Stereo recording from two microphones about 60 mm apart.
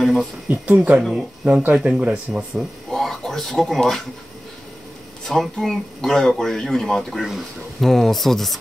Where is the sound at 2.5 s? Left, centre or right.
Centre.